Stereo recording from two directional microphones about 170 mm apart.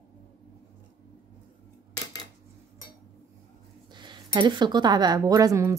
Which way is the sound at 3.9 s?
25° right (ahead or behind).